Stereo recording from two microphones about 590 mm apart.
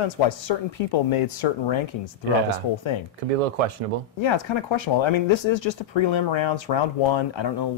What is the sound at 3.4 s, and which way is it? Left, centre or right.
Speech, right.